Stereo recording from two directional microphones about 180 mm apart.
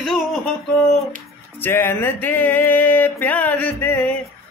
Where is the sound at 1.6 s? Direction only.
15° left (ahead or behind).